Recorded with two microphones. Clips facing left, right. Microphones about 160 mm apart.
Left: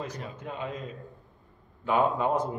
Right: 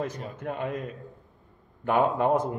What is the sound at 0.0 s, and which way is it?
A man's voice, 50° right (ahead or behind).